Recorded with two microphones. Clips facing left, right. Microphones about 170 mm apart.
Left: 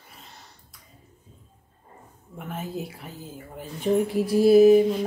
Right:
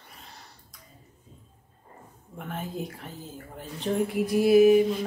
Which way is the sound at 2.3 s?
5° left (ahead or behind).